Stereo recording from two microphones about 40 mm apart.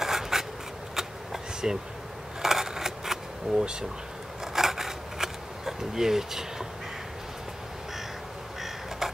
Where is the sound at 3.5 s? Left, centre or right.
Centre.